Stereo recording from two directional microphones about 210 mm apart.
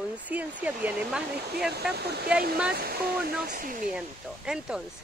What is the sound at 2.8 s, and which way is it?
Speech, 45° right (ahead or behind).